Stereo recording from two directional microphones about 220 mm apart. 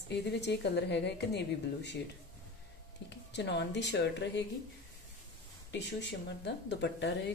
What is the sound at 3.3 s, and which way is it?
A woman's voice, 50° left (ahead or behind).